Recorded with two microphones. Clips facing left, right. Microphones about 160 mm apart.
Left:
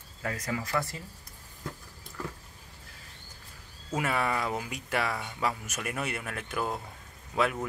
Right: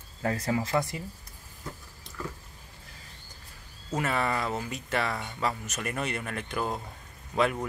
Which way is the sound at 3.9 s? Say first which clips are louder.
Right 1 dB; 10° left (ahead or behind).